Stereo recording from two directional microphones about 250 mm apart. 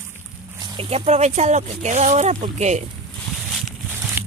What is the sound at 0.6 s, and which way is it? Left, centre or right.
Speech, centre.